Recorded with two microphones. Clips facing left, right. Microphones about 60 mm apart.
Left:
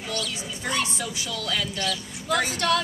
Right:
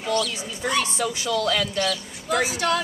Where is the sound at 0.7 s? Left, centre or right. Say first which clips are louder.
Right 4 dB; right.